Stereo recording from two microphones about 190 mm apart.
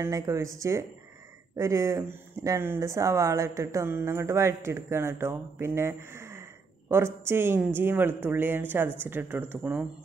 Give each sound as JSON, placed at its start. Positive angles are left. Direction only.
{"t": 0.0, "sound": "speech", "side_deg": -15}